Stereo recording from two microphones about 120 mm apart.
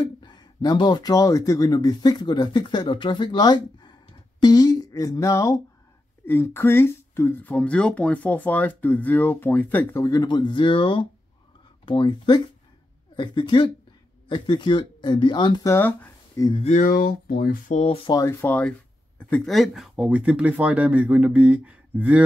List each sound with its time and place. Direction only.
0.2 s speech: 40° left (ahead or behind); by 10.0 s 15° left (ahead or behind)
10.0 s speech: 35° left (ahead or behind)
15.6 s speech: 25° left (ahead or behind)
17.6 s speech: 60° left (ahead or behind)
18.1 s speech: 25° left (ahead or behind); by 22.2 s 15° right (ahead or behind)